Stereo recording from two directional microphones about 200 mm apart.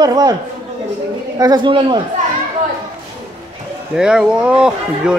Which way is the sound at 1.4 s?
20° right (ahead or behind).